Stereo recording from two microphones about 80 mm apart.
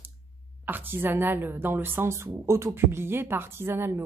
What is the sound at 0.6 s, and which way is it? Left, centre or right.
A woman's voice, right.